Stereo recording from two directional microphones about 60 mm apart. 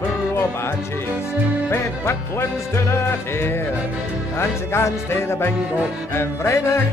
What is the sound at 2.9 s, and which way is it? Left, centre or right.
Music, left.